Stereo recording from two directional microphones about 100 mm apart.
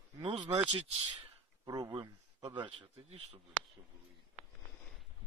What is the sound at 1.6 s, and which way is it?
Speech, 40° right (ahead or behind).